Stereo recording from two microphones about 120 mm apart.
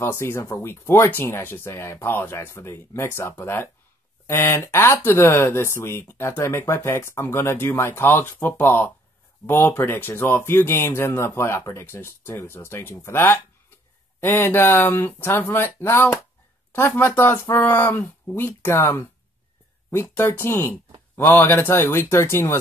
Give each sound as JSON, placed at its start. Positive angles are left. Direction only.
{"t": 0.0, "sound": "speech", "side_deg": 20}